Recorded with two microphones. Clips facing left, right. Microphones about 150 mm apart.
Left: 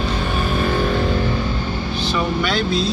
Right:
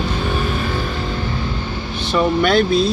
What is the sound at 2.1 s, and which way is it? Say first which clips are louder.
Speech: right 7 dB; 55° right (ahead or behind).